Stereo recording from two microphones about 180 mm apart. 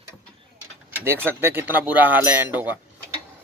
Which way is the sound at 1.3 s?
10° right (ahead or behind).